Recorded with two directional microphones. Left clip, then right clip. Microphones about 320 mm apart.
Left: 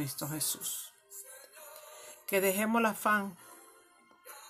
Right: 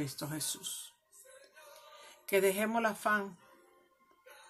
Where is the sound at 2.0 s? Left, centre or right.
Centre.